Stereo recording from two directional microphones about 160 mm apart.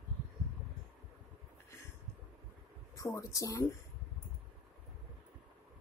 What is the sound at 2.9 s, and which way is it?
Speech, 20° left (ahead or behind).